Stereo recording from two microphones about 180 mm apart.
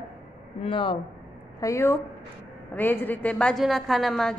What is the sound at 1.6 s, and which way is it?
A woman's voice, 15° left (ahead or behind).